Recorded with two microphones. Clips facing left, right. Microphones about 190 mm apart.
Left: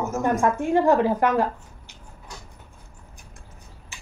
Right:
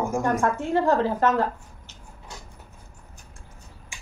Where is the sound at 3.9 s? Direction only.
15° right (ahead or behind).